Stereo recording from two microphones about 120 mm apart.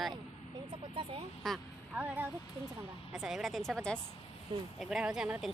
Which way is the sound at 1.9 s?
10° right (ahead or behind).